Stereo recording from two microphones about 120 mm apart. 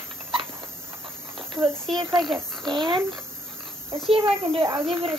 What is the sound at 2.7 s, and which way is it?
Speech, 40° right (ahead or behind).